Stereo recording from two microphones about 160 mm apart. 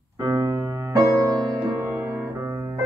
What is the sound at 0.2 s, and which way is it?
Music, 20° right (ahead or behind).